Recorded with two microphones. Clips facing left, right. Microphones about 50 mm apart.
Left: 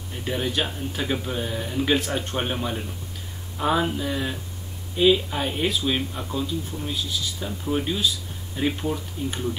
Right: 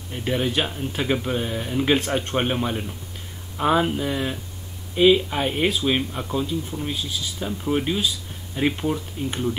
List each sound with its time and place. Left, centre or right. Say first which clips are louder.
0.1 s speech: right 3 dB; right